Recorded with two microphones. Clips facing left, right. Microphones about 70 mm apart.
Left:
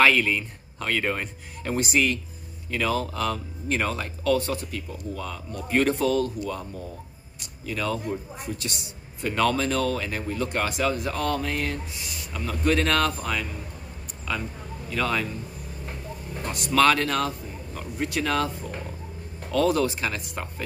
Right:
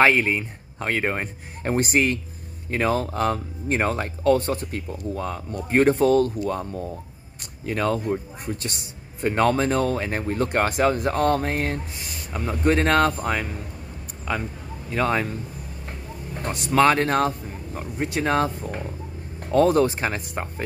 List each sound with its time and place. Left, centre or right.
0.0 s a man's voice: right
16.4 s a man's voice: right